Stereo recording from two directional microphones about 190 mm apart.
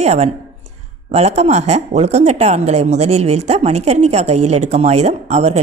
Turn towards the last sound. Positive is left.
turn(degrees=-35)  # may be behind; listen again after turning